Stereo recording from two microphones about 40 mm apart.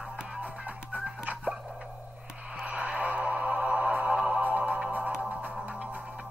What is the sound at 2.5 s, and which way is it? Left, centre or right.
Music, right.